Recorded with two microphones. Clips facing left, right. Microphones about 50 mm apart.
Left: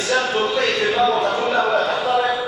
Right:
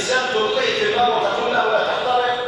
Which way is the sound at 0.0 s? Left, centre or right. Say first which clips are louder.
Even; centre.